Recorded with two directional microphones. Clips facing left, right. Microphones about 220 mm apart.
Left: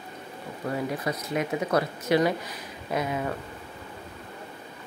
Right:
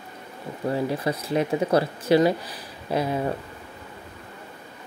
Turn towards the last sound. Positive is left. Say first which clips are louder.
# right 4 dB
turn(degrees=-30)  # may be behind; listen again after turning